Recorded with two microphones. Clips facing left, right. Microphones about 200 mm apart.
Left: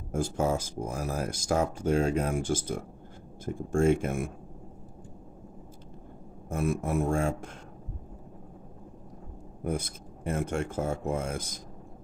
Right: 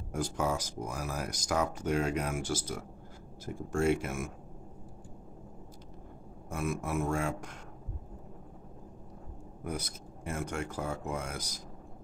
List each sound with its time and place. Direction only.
0.1 s speech: 45° left (ahead or behind)
0.8 s speech: 30° left (ahead or behind)
2.4 s speech: 50° left (ahead or behind)
3.5 s speech: 35° left (ahead or behind)
6.5 s speech: 35° left (ahead or behind)
9.6 s speech: 30° left (ahead or behind)